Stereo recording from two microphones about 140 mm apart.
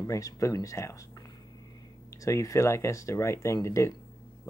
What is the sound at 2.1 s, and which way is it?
Speech, 25° left (ahead or behind).